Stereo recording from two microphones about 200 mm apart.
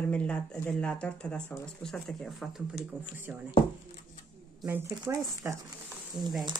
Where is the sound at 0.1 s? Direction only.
5° left (ahead or behind).